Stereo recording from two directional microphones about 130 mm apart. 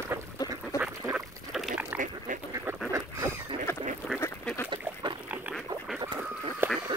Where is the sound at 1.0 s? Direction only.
5° right (ahead or behind).